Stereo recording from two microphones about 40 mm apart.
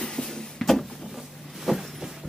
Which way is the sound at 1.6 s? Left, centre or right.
Centre.